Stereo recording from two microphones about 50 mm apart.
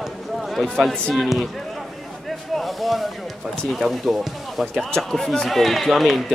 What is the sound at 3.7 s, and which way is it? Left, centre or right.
Speech, centre.